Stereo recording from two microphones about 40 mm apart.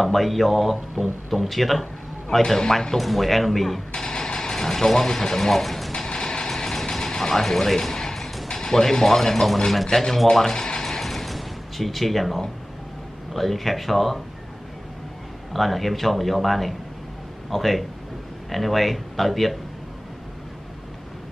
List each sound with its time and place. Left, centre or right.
0.0 s a man's voice: centre
2.4 s a man's voice: centre
3.0 s a man's voice: centre
3.9 s speech: centre
5.9 s vehicle: centre
8.5 s a man's voice: centre
10.2 s a sound: centre
13.3 s a man's voice: centre
15.5 s a man's voice: centre